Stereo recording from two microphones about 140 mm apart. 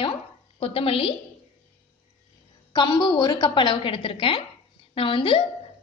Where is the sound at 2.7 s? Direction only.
30° left (ahead or behind).